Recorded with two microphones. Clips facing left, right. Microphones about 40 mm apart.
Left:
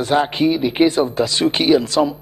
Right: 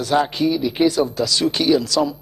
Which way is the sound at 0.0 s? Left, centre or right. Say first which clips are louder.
Left 2 dB; left.